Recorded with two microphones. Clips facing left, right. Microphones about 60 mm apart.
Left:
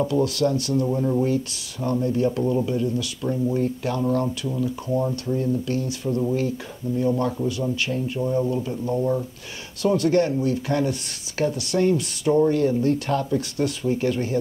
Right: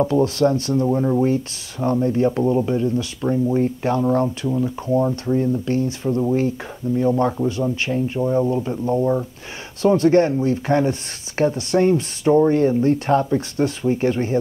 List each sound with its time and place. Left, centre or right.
0.0 s speech: right